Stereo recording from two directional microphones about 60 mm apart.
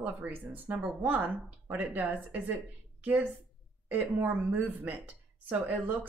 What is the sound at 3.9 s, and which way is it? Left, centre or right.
A woman's voice, right.